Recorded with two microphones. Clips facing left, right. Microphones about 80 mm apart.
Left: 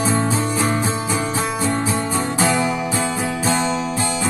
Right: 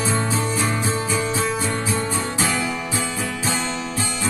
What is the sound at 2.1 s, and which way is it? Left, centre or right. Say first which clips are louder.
Music: left 4 dB; left.